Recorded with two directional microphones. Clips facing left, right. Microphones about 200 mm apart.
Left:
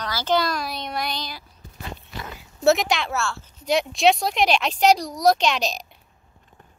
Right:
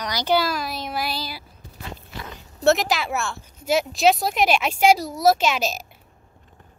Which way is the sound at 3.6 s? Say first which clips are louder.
Even; 5° right (ahead or behind).